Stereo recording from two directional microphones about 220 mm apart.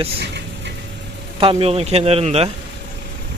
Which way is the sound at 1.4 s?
25° right (ahead or behind).